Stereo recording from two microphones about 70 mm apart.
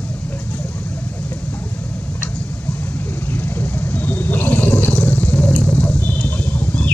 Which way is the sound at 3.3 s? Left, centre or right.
Left.